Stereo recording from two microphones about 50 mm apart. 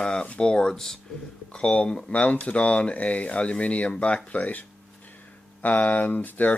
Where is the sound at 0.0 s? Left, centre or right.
Centre.